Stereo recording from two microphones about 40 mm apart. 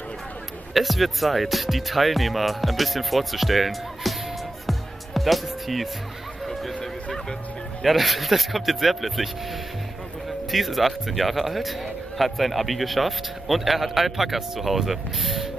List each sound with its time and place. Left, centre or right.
0.7 s speech: centre
4.6 s music: centre
6.4 s a sound: centre
6.8 s music: centre
7.8 s speech: centre
10.5 s speech: centre